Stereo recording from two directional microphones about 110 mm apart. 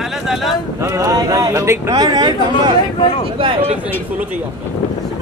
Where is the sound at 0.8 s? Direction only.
30° right (ahead or behind).